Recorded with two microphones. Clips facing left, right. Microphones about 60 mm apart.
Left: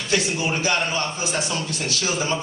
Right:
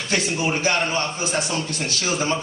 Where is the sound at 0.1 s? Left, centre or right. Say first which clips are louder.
Even; right.